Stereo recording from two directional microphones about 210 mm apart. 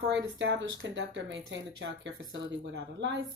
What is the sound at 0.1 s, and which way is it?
Speech, 60° right (ahead or behind).